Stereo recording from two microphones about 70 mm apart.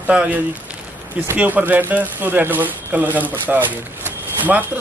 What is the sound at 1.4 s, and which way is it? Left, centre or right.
Speech, right.